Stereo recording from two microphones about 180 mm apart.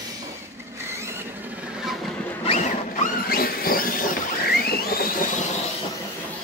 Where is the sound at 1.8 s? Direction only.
Centre (ahead or behind).